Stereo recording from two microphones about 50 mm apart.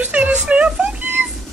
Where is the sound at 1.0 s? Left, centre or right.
Right.